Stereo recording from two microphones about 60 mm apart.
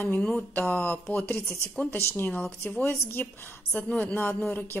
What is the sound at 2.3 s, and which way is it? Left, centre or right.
Speech, left.